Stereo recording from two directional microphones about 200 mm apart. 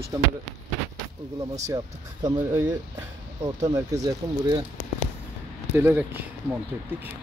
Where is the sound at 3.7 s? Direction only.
15° right (ahead or behind).